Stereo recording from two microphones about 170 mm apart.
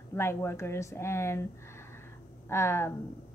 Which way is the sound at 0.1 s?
15° left (ahead or behind).